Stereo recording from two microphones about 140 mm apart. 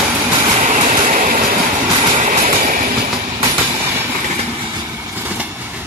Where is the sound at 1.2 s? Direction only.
80° right.